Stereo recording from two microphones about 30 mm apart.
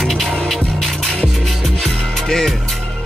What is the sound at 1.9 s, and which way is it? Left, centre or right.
Music, centre.